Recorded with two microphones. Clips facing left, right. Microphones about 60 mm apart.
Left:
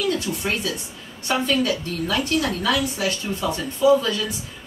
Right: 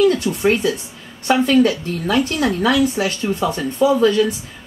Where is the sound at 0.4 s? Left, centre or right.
Right.